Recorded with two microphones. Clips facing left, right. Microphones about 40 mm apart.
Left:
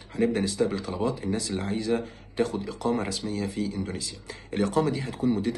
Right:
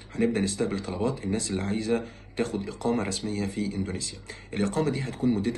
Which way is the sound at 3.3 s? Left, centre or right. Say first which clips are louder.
Even; right.